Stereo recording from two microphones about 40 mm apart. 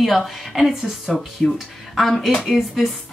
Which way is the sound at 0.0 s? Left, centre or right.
Centre.